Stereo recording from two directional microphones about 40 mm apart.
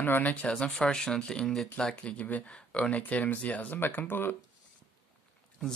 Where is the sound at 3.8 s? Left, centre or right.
Left.